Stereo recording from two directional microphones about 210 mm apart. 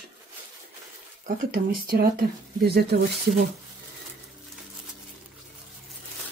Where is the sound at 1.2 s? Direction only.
45° right (ahead or behind).